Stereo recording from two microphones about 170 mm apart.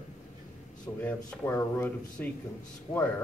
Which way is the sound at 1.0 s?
10° left (ahead or behind).